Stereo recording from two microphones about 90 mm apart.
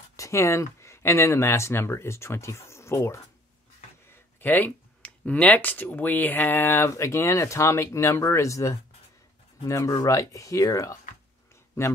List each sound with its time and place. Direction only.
0.1 s speech: 35° left (ahead or behind)
4.4 s speech: 20° left (ahead or behind)